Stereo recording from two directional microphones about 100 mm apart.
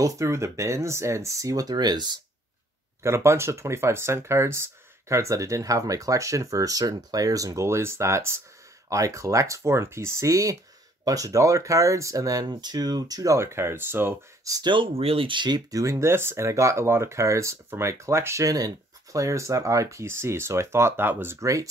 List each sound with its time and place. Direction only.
0.0 s speech: 30° right (ahead or behind)
3.0 s speech: 30° right (ahead or behind)
14.4 s speech: 35° right (ahead or behind)
14.7 s speech: 65° right (ahead or behind); by 21.6 s 30° right (ahead or behind)